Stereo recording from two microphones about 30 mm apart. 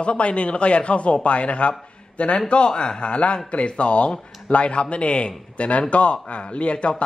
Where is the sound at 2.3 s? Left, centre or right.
Left.